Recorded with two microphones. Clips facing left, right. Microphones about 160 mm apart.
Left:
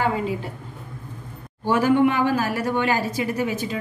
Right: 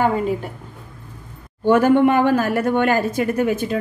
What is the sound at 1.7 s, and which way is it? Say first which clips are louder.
Speech: right 4 dB; 55° right (ahead or behind).